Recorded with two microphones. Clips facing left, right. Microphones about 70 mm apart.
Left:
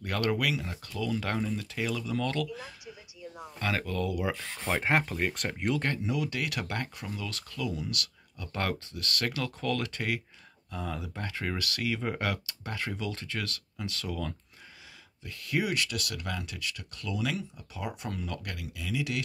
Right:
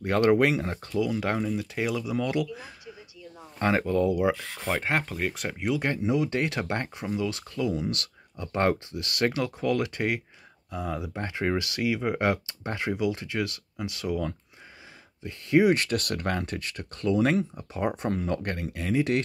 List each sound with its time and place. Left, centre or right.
0.0 s speech: right
1.0 s speech: centre
4.6 s speech: centre
5.8 s speech: right